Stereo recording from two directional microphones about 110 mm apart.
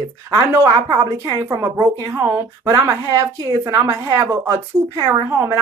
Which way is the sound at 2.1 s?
20° right (ahead or behind).